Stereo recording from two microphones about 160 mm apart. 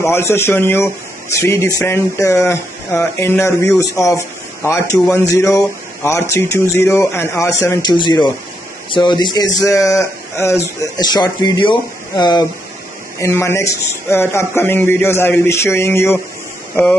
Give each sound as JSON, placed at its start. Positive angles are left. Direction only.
{"t": 0.0, "sound": "speech", "side_deg": 15}
{"t": 13.2, "sound": "speech", "side_deg": 15}